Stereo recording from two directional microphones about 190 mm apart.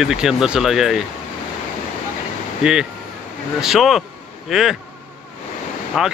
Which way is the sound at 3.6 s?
Centre (ahead or behind).